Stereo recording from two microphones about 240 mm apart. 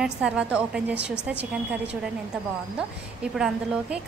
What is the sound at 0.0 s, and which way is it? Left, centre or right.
A woman's voice, centre.